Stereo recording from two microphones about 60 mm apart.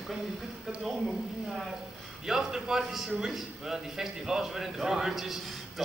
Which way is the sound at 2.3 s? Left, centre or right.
Centre.